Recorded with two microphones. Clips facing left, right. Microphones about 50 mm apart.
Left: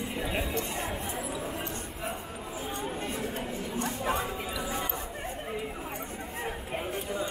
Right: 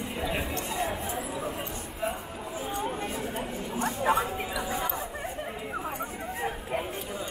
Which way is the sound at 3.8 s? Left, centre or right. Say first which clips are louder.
Right 6 dB; right.